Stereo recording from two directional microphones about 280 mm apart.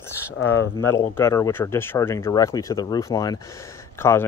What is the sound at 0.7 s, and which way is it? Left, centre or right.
Speech, centre.